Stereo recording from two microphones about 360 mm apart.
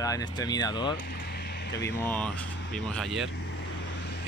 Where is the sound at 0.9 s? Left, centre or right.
Left.